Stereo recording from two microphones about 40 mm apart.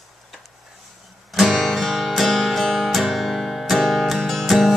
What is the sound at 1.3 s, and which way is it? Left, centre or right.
Guitar, centre.